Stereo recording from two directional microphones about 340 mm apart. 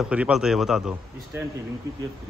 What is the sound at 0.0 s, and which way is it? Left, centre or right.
Speech, centre.